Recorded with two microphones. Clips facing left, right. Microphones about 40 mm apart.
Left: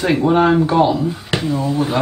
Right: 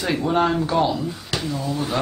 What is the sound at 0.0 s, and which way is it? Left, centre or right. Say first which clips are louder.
Speech: left 6 dB; left.